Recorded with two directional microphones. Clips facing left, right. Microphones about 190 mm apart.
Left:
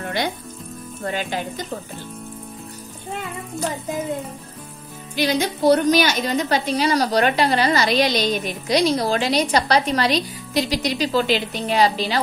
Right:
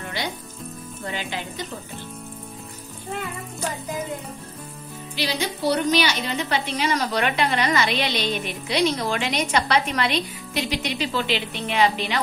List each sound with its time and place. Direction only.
1.0 s music: 50° left (ahead or behind)
5.1 s a woman's voice: 45° left (ahead or behind)